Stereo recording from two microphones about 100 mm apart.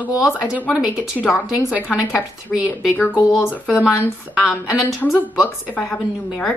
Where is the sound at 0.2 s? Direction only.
10° right (ahead or behind).